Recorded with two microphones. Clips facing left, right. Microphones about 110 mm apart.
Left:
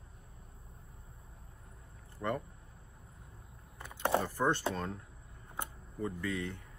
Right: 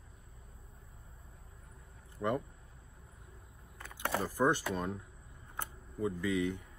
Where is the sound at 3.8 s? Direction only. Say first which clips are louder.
Left 4 dB; 20° left (ahead or behind).